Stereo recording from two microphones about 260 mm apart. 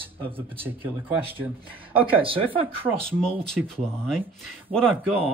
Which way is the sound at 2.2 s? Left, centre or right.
Right.